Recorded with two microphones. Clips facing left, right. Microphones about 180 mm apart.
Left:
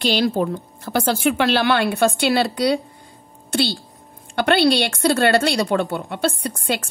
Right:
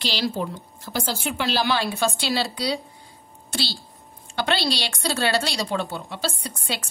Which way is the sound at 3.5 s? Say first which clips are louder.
Left 9 dB; 55° left (ahead or behind).